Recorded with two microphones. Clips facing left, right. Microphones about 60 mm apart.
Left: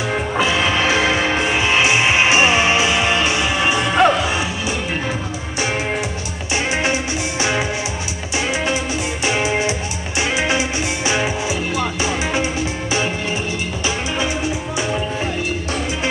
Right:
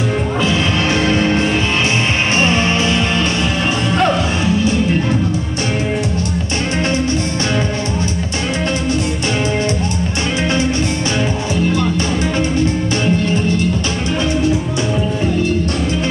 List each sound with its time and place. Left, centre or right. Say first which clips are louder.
0.4 s music: left 1 dB; centre
3.9 s music: left 1 dB; centre